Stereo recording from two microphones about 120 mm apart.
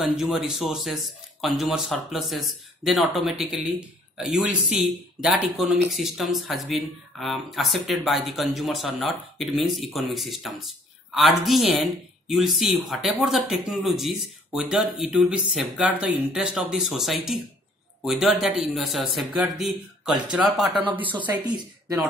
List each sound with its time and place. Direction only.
0.0 s speech: 5° right (ahead or behind)
4.2 s speech: 5° right (ahead or behind)
21.2 s a woman's voice: 35° right (ahead or behind)